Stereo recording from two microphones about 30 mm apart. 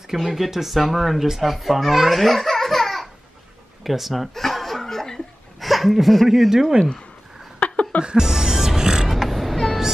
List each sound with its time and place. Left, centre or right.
0.2 s a child's voice: centre
4.3 s chuckle: centre
5.6 s speech: centre
7.5 s a sound: left
8.2 s music: centre
9.1 s creak: centre